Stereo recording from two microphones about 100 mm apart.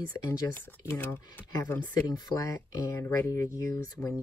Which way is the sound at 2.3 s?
35° left (ahead or behind).